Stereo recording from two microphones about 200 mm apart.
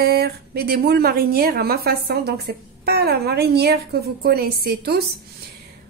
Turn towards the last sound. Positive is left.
turn(degrees=-50)  # may be behind; listen again after turning